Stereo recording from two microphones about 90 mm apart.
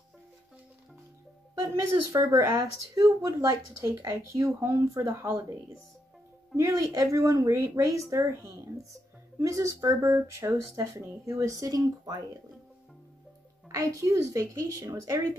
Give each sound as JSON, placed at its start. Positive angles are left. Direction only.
{"t": 1.5, "sound": "speech", "side_deg": -30}
{"t": 6.5, "sound": "speech", "side_deg": -35}
{"t": 9.4, "sound": "speech", "side_deg": -35}
{"t": 13.7, "sound": "speech", "side_deg": -35}